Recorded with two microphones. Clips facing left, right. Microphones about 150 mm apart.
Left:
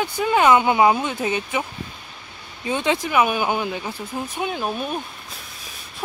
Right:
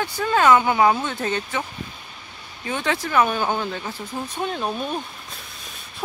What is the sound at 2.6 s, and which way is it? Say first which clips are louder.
Speech: left 3 dB; 20° left (ahead or behind).